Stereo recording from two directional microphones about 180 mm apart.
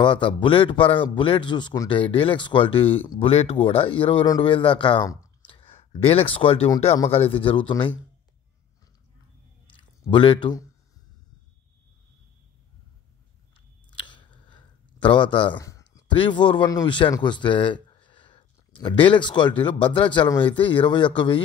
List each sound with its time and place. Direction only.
0.0 s a man's voice: 25° left (ahead or behind)
9.8 s speech: 25° left (ahead or behind)
13.8 s speech: 25° left (ahead or behind)